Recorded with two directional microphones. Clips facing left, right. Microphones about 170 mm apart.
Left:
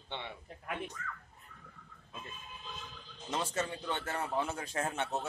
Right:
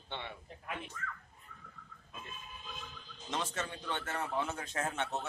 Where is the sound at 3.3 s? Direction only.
10° left (ahead or behind).